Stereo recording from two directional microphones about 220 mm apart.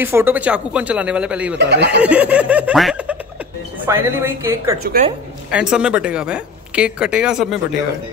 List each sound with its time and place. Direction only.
0.0 s speech: 10° right (ahead or behind)
1.6 s speech: 50° right (ahead or behind)
2.0 s a woman's voice: 5° right (ahead or behind)